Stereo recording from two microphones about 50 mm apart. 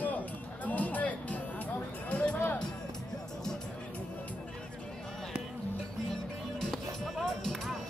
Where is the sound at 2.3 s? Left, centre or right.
Left.